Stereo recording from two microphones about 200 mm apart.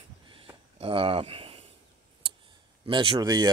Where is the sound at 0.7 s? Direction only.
30° right (ahead or behind).